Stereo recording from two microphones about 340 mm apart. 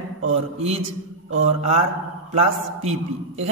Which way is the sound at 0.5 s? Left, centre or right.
Centre.